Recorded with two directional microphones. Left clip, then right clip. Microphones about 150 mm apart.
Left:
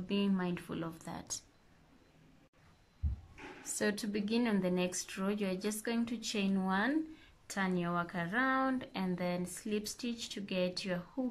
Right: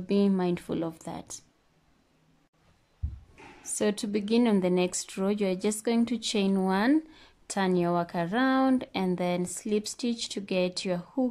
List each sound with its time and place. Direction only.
0.0 s speech: 30° right (ahead or behind)
3.6 s speech: 20° right (ahead or behind)